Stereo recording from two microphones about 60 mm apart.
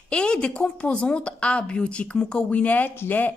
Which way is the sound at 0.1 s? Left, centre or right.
Centre.